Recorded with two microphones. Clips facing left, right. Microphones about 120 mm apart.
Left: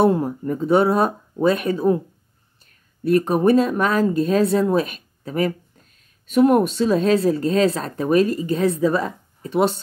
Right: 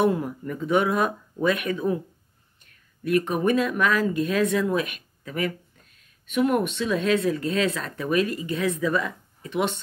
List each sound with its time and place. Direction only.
0.0 s speech: 30° left (ahead or behind)